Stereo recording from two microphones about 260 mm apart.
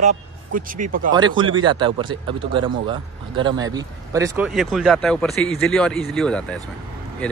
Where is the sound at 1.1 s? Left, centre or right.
Centre.